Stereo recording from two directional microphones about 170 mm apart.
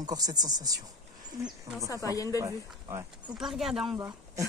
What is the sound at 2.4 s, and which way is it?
Speech, 20° right (ahead or behind).